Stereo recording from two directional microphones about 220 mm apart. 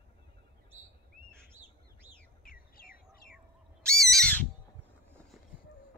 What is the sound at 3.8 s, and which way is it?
Owl, centre (ahead or behind).